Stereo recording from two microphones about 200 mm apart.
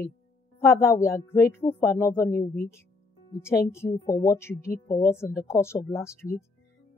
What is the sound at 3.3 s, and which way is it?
Speech, 15° left (ahead or behind).